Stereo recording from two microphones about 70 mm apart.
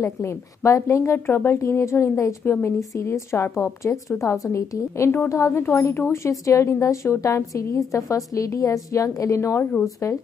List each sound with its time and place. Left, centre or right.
0.0 s a woman's voice: left
9.6 s speech: left